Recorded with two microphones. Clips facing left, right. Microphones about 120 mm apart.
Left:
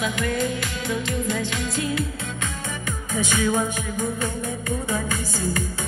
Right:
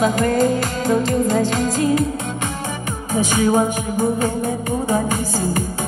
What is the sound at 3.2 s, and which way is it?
Music, 40° right (ahead or behind).